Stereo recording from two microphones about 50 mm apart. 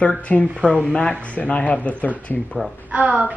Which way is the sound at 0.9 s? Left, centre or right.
Left.